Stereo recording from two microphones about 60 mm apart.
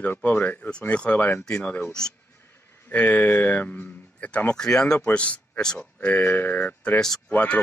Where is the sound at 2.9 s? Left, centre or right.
Left.